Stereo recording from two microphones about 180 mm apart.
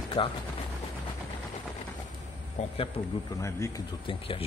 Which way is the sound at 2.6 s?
40° left (ahead or behind).